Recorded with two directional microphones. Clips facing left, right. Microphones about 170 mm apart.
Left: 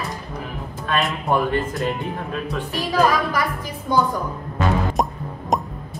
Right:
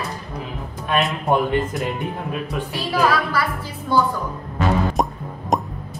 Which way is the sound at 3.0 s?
15° left (ahead or behind).